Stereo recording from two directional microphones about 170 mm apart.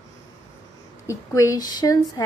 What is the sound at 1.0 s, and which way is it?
A woman's voice, 20° left (ahead or behind).